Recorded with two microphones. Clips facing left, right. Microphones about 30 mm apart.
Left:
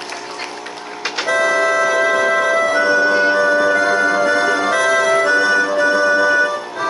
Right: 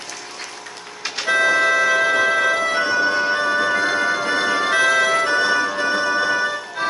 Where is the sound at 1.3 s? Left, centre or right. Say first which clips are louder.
Left 1 dB; centre.